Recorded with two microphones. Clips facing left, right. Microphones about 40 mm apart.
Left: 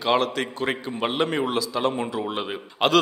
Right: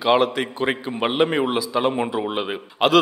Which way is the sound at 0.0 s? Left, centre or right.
Centre.